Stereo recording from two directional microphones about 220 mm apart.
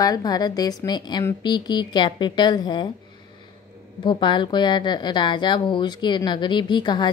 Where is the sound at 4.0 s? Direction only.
20° left (ahead or behind).